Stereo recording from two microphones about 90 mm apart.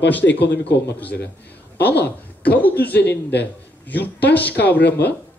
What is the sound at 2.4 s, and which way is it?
Speech, 20° left (ahead or behind).